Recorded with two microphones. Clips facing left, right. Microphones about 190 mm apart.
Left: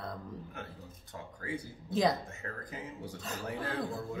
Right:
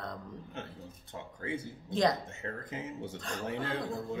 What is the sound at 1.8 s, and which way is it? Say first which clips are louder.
Speech: even; 5° left (ahead or behind).